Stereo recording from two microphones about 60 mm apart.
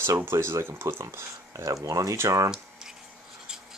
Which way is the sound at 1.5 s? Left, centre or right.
Right.